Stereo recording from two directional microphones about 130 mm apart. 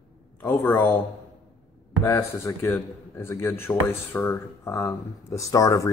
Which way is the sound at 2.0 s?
20° left (ahead or behind).